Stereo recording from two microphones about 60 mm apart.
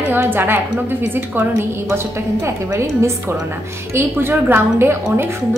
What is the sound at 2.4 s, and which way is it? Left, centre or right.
Speech, right.